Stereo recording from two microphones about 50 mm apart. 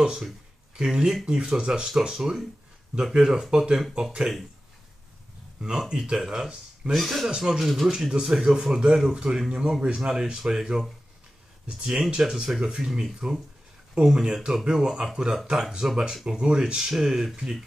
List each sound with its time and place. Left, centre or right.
0.7 s speech: centre
5.6 s speech: centre
6.9 s speech: centre
12.2 s speech: centre